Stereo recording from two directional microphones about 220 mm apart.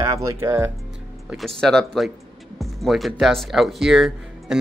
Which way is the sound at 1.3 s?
Centre (ahead or behind).